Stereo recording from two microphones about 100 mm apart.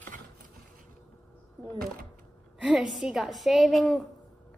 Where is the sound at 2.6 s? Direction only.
5° right (ahead or behind).